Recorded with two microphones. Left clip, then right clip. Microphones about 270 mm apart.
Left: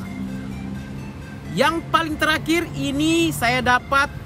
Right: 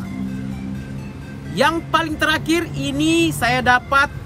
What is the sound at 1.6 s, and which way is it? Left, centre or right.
Speech, centre.